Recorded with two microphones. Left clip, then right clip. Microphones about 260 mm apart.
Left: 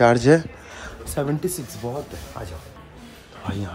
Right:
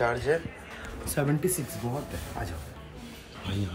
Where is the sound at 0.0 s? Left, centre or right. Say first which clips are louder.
Left 11 dB; left.